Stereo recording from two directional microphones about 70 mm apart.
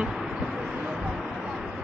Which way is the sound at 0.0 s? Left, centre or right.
Centre.